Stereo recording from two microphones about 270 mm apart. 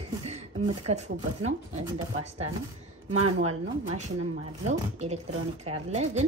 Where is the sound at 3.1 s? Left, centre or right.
Right.